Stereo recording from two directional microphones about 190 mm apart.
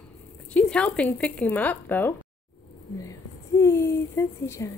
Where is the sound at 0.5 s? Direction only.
5° left (ahead or behind).